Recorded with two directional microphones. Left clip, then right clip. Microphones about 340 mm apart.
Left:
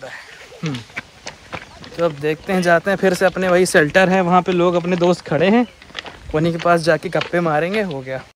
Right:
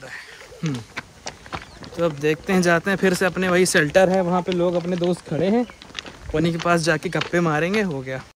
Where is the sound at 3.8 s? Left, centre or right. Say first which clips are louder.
Left 3 dB; left.